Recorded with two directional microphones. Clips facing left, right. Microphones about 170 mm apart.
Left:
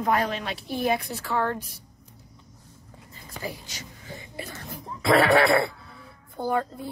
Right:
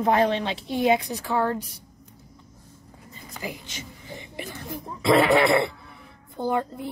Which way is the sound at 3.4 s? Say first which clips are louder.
Right 1 dB; 25° right (ahead or behind).